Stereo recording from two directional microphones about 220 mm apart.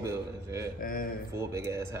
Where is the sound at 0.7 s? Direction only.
40° left (ahead or behind).